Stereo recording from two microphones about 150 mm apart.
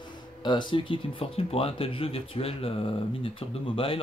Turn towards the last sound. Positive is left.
turn(degrees=35)  # may be behind; listen again after turning